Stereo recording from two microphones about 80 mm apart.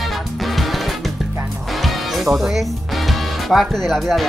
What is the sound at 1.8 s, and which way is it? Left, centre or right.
Music, centre.